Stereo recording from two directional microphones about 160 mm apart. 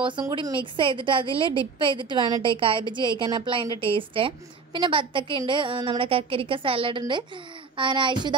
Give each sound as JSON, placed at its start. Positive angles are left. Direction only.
{"t": 0.3, "sound": "a woman's voice", "side_deg": -30}